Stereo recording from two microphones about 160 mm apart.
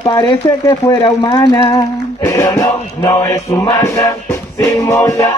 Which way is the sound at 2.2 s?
20° left (ahead or behind).